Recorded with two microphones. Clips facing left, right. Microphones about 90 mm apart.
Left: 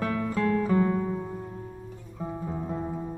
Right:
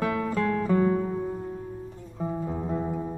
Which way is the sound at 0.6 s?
15° right (ahead or behind).